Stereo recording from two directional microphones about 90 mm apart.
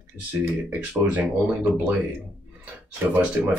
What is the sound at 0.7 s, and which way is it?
Speech, 20° right (ahead or behind).